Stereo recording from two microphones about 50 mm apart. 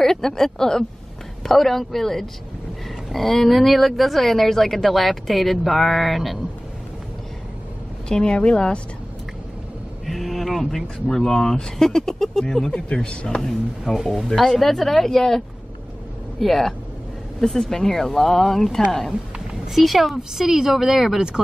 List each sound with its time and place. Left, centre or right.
0.0 s speech: centre
8.2 s speech: centre
10.0 s speech: centre
12.7 s speech: left
13.4 s a woman's voice: centre